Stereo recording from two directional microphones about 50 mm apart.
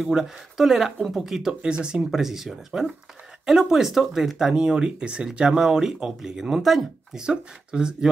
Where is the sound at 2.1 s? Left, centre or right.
Centre.